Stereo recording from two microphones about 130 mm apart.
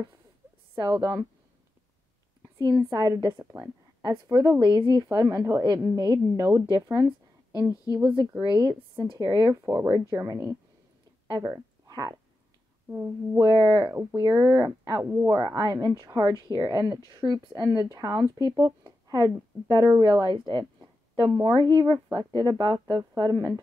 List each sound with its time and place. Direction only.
0.7 s speech: 30° right (ahead or behind)
2.9 s speech: 30° right (ahead or behind)
3.3 s speech: 20° right (ahead or behind)
4.0 s speech: 30° right (ahead or behind)
9.2 s speech: 25° right (ahead or behind)
12.8 s speech: 20° right (ahead or behind)
13.4 s a woman's voice: 30° right (ahead or behind)